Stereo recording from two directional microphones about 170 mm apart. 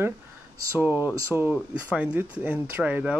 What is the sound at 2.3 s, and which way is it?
Speech, 5° right (ahead or behind).